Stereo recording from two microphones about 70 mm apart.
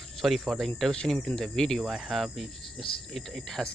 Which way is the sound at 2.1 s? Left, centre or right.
Centre.